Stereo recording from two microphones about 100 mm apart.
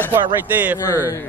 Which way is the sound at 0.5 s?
15° right (ahead or behind).